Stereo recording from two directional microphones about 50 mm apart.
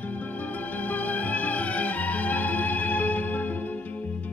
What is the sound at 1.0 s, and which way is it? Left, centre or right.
Music, left.